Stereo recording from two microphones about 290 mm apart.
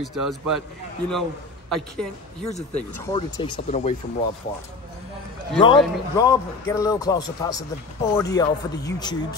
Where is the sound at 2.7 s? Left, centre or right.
Centre.